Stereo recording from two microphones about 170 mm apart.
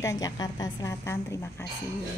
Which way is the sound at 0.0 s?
20° left (ahead or behind).